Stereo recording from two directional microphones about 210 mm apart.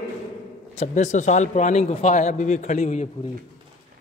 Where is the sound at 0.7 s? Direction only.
35° left (ahead or behind).